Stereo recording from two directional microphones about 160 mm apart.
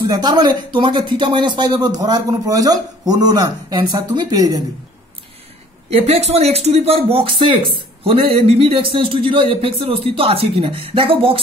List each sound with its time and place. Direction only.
0.1 s speech: 25° right (ahead or behind)
5.9 s speech: 40° right (ahead or behind)